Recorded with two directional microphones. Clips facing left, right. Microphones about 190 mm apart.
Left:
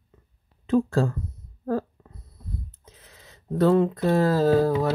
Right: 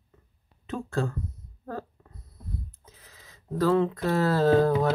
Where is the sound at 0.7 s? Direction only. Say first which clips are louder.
Left 8 dB; 35° left (ahead or behind).